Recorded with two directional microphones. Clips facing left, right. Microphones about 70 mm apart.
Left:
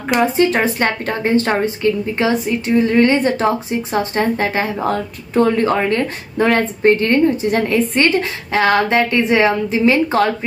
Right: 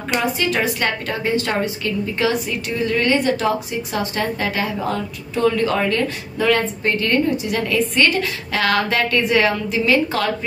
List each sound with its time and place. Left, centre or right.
0.2 s a woman's voice: left